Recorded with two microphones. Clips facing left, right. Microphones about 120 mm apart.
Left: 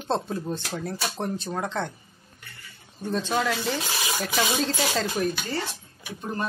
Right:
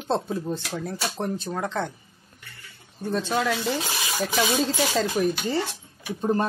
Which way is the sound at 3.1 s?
Centre (ahead or behind).